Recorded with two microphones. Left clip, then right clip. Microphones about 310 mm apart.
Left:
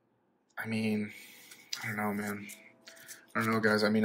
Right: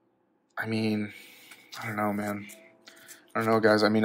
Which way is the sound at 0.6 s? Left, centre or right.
Centre.